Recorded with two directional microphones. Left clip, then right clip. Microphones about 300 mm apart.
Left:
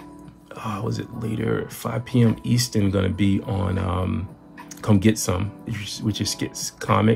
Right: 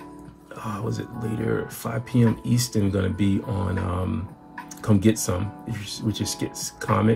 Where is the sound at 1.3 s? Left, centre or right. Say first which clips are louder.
Left 1 dB; left.